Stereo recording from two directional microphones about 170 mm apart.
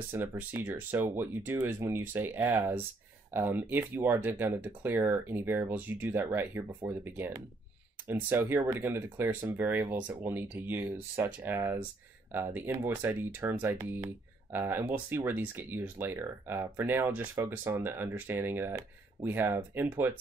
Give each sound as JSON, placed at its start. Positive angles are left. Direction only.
{"t": 0.1, "sound": "speech", "side_deg": -10}